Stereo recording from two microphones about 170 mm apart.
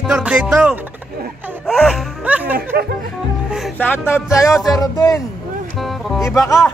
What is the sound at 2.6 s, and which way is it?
Speech, 55° right (ahead or behind).